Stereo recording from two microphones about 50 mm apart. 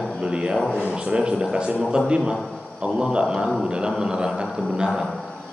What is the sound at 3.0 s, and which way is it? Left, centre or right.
A man's voice, centre.